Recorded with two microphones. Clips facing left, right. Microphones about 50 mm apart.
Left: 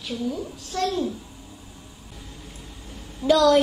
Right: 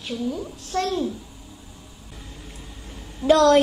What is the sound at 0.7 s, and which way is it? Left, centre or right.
Speech, right.